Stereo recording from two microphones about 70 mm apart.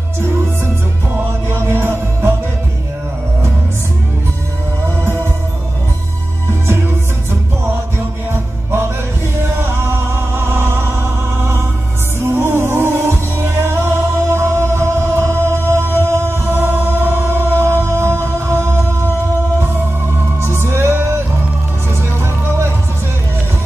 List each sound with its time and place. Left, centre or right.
1.5 s music: right
5.0 s music: right
9.4 s music: right
12.2 s music: right
20.4 s music: right